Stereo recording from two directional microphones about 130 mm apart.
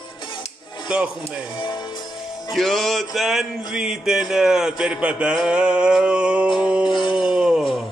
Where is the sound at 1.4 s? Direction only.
35° left (ahead or behind).